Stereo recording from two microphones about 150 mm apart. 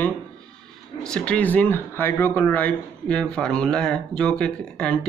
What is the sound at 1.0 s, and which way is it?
Speech, 5° left (ahead or behind).